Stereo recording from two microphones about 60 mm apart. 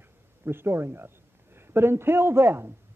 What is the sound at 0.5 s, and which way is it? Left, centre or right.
Speech, right.